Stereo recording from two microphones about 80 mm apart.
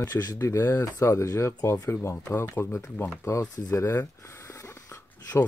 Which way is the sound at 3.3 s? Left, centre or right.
Left.